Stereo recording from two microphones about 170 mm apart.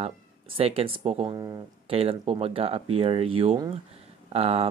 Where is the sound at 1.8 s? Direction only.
35° right (ahead or behind).